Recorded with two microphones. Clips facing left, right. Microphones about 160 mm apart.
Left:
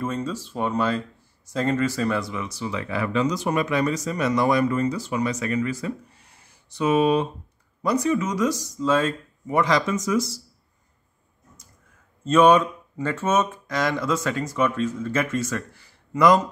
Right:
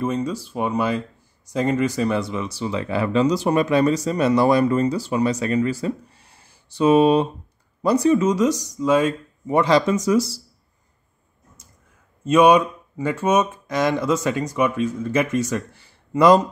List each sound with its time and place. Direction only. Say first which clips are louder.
0.0 s speech: right 4 dB; 15° right (ahead or behind)
9.5 s speech: right 4 dB; 30° right (ahead or behind)
12.3 s speech: right 2 dB; 15° right (ahead or behind); by 16.4 s 30° right (ahead or behind)